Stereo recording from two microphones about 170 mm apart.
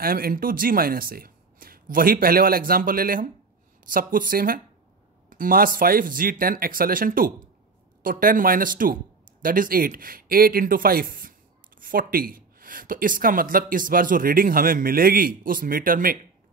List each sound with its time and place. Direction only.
0.0 s speech: 60° right (ahead or behind)